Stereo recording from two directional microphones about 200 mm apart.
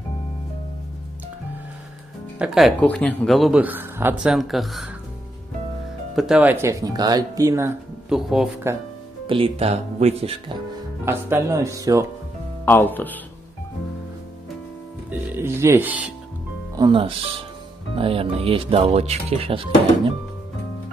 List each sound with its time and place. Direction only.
2.3 s speech: 5° right (ahead or behind)
6.1 s speech: 5° right (ahead or behind)
8.1 s speech: centre (ahead or behind)
9.3 s speech: 30° right (ahead or behind)
11.1 s speech: 10° right (ahead or behind)
12.6 s speech: 10° left (ahead or behind)
15.0 s music: 10° right (ahead or behind)
16.7 s speech: 25° right (ahead or behind)